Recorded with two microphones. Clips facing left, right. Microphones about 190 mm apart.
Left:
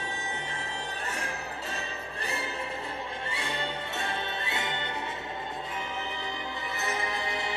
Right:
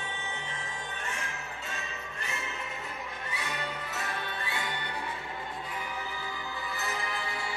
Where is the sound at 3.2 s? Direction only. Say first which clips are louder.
Left 1 dB; 30° left (ahead or behind).